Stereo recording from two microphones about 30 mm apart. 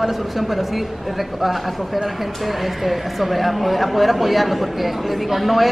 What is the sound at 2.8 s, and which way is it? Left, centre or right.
Speech, centre.